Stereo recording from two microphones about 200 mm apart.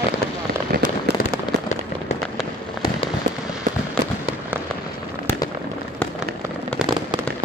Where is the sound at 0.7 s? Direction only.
50° right (ahead or behind).